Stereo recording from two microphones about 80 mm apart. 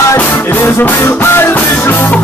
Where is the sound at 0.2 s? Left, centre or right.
Left.